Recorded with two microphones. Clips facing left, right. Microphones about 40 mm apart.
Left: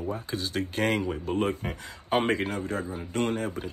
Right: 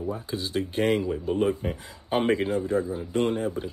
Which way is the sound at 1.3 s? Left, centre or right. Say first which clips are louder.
Right 4 dB; left.